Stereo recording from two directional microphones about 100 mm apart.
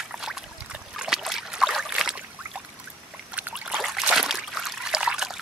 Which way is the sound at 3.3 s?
15° right (ahead or behind).